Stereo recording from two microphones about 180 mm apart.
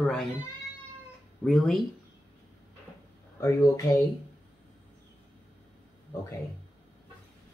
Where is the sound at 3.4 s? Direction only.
15° left (ahead or behind).